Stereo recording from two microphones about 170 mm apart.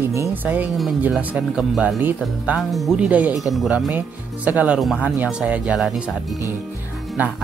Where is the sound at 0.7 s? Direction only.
Centre (ahead or behind).